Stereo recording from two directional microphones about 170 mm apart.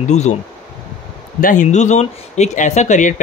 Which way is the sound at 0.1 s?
40° left (ahead or behind).